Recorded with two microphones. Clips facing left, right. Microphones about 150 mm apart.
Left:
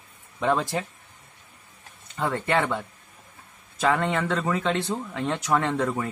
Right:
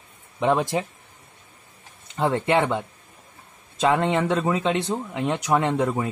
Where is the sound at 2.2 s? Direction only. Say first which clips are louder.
Right 4 dB; 20° right (ahead or behind).